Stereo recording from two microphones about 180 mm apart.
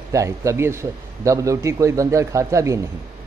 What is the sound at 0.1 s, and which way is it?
A man's voice, 15° right (ahead or behind).